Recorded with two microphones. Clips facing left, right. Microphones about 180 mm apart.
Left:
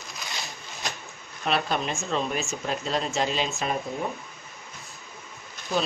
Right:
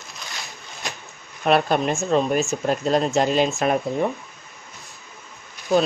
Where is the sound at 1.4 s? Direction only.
50° right (ahead or behind).